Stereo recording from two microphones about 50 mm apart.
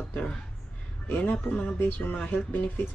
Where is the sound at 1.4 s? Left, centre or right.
Left.